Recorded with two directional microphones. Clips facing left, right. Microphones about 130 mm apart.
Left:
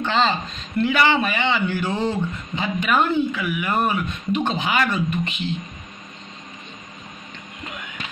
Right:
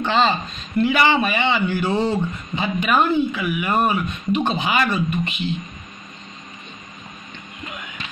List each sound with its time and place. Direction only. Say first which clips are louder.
0.0 s a man's voice: right 2 dB; 15° right (ahead or behind)